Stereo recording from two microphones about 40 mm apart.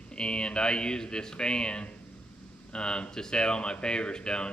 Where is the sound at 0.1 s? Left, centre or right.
Left.